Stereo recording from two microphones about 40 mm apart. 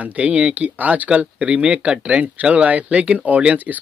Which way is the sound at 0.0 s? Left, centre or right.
Right.